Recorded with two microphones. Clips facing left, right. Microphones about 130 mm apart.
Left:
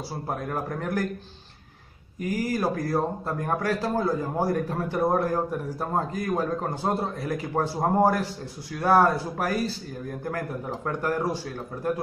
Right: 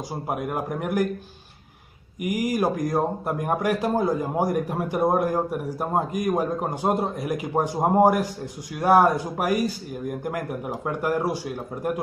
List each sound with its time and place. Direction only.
0.1 s speech: 15° right (ahead or behind)
2.2 s speech: 15° right (ahead or behind)